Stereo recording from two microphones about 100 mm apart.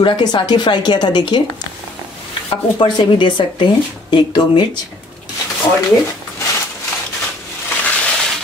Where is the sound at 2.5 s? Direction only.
55° left (ahead or behind).